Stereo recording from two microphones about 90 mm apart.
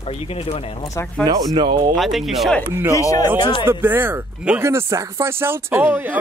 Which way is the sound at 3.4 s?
55° left (ahead or behind).